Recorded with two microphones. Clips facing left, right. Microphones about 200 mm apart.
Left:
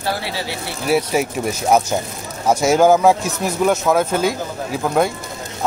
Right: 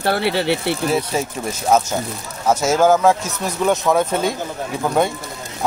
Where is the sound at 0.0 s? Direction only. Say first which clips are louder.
Right 5 dB; 60° right (ahead or behind).